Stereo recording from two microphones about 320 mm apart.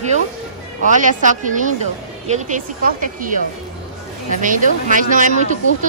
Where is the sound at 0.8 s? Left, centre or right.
Right.